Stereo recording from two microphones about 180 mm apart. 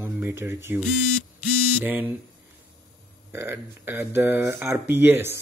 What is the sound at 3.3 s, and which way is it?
Speech, 10° right (ahead or behind).